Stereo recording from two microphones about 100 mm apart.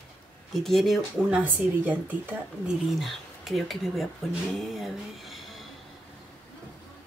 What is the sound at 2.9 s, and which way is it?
Speech, centre (ahead or behind).